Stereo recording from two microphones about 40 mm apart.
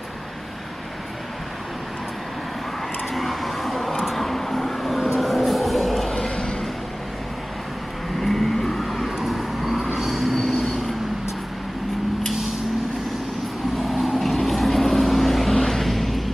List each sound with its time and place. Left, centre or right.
3.2 s vehicle: centre
6.1 s a sound: centre
8.2 s vehicle: centre
13.7 s vehicle: centre